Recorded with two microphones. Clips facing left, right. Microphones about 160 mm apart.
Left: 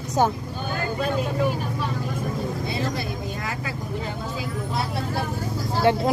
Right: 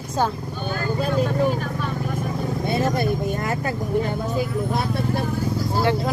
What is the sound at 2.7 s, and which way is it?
Speech, 50° right (ahead or behind).